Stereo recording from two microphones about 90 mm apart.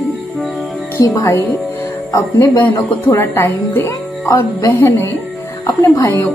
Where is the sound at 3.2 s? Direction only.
25° left (ahead or behind).